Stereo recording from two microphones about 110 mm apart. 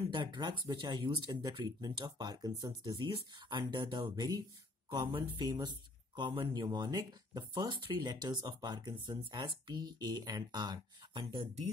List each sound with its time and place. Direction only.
0.1 s speech: 45° right (ahead or behind)